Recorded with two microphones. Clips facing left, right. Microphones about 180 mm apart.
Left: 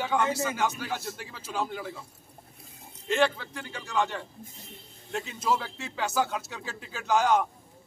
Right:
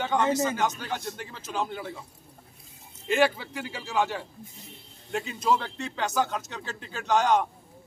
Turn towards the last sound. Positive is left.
turn(degrees=5)  # may be behind; listen again after turning